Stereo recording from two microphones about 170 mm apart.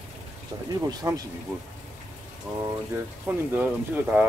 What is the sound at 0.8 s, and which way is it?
Speech, 20° right (ahead or behind).